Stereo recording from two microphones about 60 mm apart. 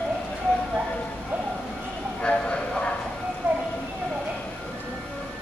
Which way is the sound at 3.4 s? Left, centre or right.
Right.